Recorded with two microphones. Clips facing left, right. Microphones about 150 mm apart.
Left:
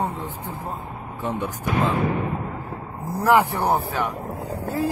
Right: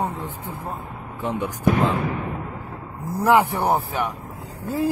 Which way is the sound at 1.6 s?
55° right (ahead or behind).